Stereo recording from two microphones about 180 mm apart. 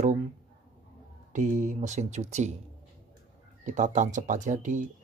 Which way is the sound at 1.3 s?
45° right (ahead or behind).